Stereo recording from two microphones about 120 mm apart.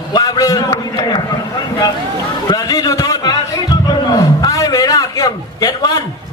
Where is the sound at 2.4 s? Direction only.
30° left (ahead or behind).